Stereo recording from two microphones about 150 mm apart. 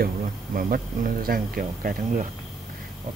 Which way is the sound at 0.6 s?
70° right (ahead or behind).